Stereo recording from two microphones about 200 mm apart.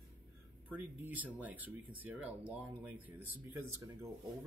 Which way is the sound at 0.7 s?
10° right (ahead or behind).